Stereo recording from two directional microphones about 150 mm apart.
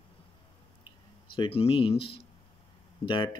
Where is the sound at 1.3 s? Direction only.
35° left (ahead or behind).